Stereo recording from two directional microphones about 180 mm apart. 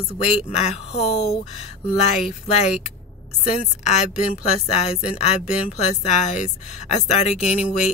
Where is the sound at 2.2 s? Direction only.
40° left (ahead or behind).